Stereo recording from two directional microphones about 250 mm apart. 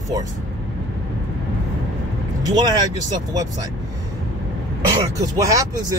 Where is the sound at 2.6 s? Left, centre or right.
Centre.